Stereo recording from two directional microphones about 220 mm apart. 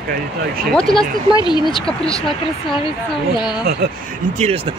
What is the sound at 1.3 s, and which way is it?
Speech, 20° left (ahead or behind).